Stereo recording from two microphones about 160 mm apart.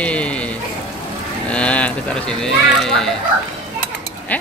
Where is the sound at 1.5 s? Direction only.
10° left (ahead or behind).